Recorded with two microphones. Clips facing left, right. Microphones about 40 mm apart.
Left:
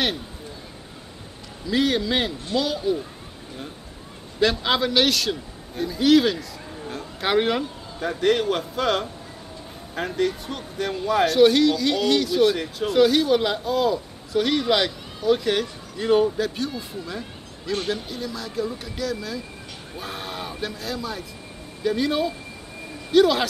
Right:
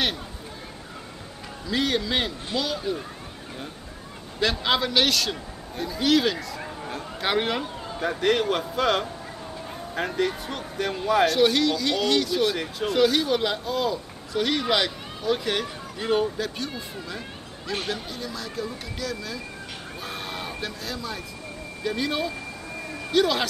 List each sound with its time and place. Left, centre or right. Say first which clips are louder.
1.7 s speech: left 3 dB; centre
4.4 s speech: left 3 dB; centre